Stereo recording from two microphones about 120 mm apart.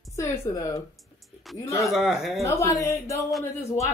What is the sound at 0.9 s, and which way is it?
Music, centre (ahead or behind).